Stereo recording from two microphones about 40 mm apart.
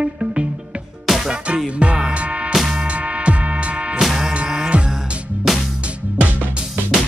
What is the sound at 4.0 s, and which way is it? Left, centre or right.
Music, centre.